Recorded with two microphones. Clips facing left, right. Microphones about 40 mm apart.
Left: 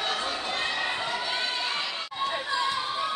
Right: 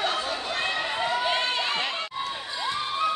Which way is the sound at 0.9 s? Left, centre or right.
Right.